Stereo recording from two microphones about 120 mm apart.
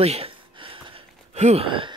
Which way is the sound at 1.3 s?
65° right (ahead or behind).